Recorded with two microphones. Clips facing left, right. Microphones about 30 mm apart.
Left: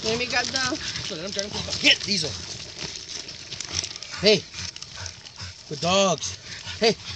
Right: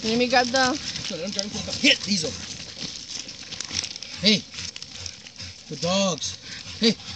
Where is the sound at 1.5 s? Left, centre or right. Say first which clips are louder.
Left 1 dB; left.